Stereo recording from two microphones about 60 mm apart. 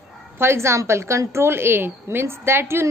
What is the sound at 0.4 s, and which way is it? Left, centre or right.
A woman's voice, right.